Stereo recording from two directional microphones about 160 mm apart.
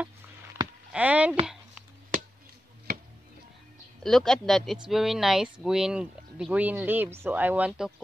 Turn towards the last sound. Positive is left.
turn(degrees=-10)  # may be behind; listen again after turning